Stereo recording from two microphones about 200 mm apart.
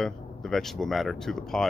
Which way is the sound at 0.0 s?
Centre (ahead or behind).